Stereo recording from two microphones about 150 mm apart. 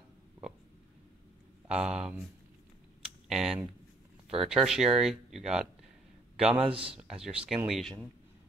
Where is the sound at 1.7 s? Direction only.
5° right (ahead or behind).